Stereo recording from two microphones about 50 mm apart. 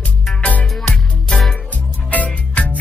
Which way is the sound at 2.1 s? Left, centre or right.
Left.